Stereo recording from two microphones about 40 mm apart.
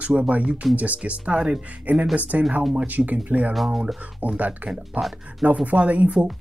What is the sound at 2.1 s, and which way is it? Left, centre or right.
Speech, right.